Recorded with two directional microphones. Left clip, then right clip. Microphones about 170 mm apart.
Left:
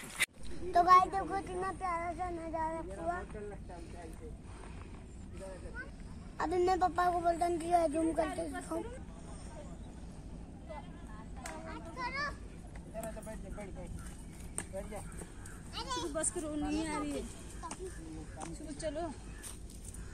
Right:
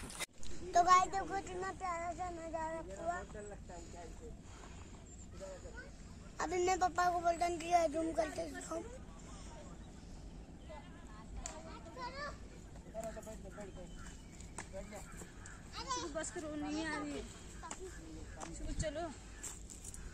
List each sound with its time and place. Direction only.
0.2 s a child's voice: 15° right (ahead or behind)
6.3 s speech: 15° right (ahead or behind)
12.0 s children playing: 20° left (ahead or behind)
15.7 s speech: 55° left (ahead or behind); by 17.1 s 85° left
18.4 s speech: centre (ahead or behind)